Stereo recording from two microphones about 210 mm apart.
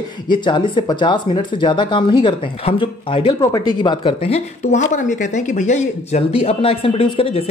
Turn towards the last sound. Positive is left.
turn(degrees=25)  # may be behind; listen again after turning